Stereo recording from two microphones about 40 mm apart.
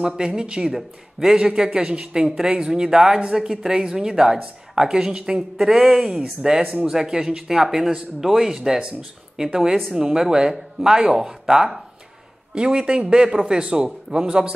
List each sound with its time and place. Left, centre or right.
0.0 s speech: centre
12.5 s speech: right